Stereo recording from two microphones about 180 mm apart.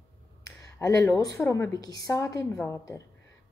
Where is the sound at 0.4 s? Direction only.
15° left (ahead or behind).